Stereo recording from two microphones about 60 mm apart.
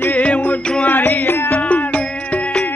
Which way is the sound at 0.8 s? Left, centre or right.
Left.